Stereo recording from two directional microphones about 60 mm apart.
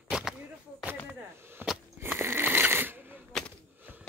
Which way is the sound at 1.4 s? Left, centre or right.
Right.